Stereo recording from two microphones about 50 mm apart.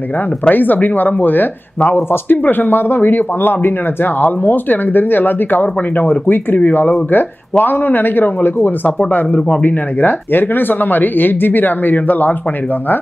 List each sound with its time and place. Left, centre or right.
0.5 s a man's voice: left